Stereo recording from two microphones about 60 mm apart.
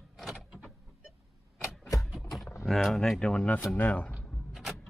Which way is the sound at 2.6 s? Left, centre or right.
Centre.